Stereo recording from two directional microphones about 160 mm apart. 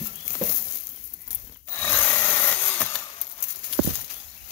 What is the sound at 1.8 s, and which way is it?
Wood, 10° left (ahead or behind).